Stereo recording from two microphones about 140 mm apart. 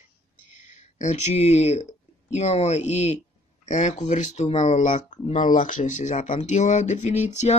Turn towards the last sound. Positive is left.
turn(degrees=55)  # may be behind; listen again after turning